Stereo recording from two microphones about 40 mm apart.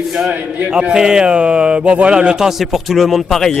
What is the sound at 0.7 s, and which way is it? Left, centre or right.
Speech, right.